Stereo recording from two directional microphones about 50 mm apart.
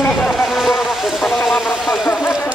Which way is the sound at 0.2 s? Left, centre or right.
Centre.